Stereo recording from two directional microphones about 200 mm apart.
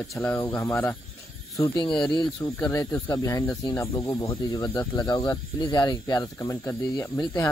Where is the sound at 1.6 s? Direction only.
20° left (ahead or behind).